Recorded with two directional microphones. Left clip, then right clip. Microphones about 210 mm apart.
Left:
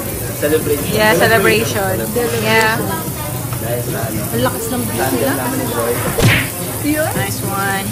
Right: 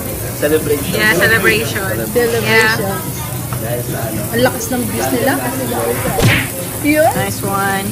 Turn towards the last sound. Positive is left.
turn(degrees=0)  # may be behind; listen again after turning